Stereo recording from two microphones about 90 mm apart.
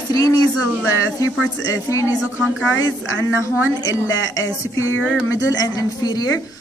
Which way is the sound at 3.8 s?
40° left (ahead or behind).